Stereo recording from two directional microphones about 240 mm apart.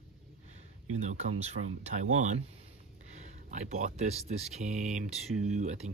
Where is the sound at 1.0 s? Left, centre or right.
Right.